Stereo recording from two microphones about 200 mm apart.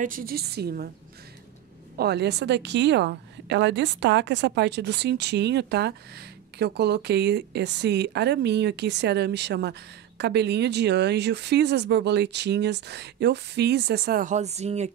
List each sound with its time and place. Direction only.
0.0 s a woman's voice: 45° right (ahead or behind)
2.0 s a woman's voice: 55° right (ahead or behind); by 14.9 s 35° right (ahead or behind)